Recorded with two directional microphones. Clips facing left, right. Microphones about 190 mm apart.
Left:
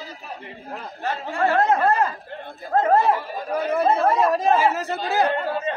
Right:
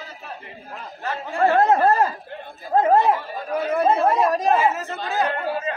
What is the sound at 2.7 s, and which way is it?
Chatter, 15° right (ahead or behind).